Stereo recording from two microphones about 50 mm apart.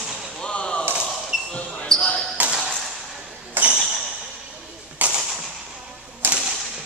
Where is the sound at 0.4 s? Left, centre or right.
Left.